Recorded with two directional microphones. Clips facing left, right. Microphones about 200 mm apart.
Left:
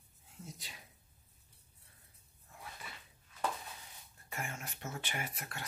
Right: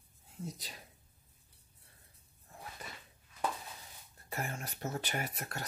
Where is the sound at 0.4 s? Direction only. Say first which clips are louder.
Right 7 dB; 35° right (ahead or behind).